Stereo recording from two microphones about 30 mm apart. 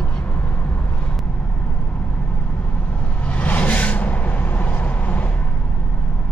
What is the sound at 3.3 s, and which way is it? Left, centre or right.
Vehicle, left.